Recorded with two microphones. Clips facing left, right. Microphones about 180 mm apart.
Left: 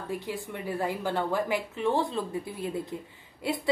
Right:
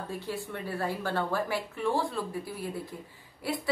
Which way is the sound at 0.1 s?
15° left (ahead or behind).